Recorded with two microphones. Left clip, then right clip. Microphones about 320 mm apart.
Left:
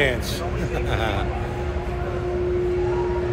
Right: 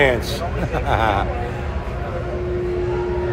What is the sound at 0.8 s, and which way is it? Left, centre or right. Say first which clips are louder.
Speech: right 9 dB; centre.